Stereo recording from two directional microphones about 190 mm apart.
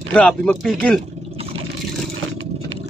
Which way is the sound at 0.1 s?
5° left (ahead or behind).